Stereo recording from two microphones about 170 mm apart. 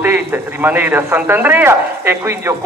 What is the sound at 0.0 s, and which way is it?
A man's voice, 10° right (ahead or behind).